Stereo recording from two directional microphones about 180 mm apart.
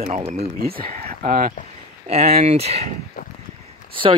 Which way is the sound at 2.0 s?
35° right (ahead or behind).